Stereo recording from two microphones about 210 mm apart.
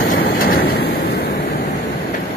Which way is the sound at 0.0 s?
40° left (ahead or behind).